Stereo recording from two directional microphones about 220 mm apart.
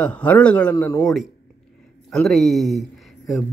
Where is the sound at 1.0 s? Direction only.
Centre (ahead or behind).